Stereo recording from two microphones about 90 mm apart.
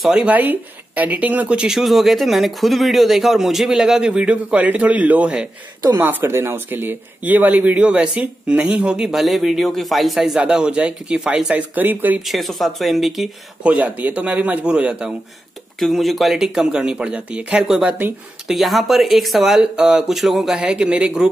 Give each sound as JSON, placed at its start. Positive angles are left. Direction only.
{"t": 0.0, "sound": "speech", "side_deg": -5}
{"t": 0.3, "sound": "speech", "side_deg": -20}
{"t": 12.3, "sound": "speech", "side_deg": 0}
{"t": 13.7, "sound": "speech", "side_deg": -15}
{"t": 15.8, "sound": "speech", "side_deg": 0}